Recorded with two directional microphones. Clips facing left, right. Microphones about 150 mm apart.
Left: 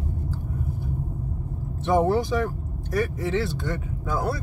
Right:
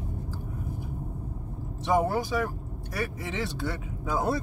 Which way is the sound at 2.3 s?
10° right (ahead or behind).